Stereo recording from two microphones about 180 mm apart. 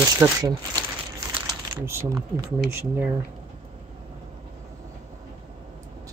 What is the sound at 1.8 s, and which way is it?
Speech, 15° right (ahead or behind).